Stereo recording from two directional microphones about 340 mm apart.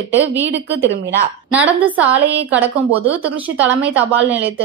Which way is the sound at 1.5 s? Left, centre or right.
Centre.